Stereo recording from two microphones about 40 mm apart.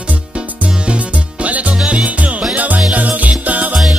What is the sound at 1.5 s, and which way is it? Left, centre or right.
Music, right.